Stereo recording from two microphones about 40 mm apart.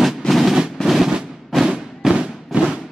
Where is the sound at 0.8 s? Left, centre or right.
Centre.